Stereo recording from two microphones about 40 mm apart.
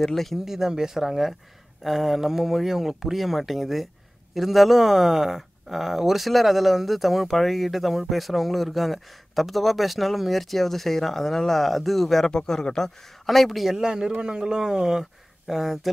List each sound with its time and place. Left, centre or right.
0.0 s speech: centre
0.5 s speech: centre
13.7 s speech: centre